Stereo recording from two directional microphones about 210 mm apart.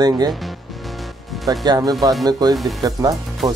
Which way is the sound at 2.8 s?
15° right (ahead or behind).